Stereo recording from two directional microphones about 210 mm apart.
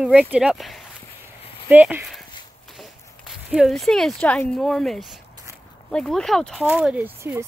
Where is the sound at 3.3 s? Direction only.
Centre (ahead or behind).